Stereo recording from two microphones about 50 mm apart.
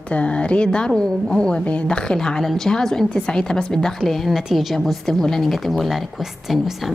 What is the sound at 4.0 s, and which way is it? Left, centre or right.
A woman's voice, centre.